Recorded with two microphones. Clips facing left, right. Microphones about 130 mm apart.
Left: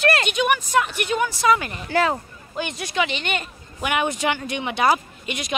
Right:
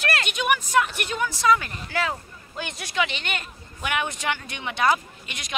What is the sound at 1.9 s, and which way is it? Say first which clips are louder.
Speech: left 7 dB; 45° left (ahead or behind).